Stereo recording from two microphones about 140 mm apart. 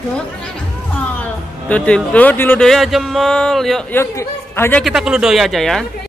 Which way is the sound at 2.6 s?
Centre (ahead or behind).